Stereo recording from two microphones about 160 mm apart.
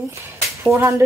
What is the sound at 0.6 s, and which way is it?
Speech, 15° right (ahead or behind).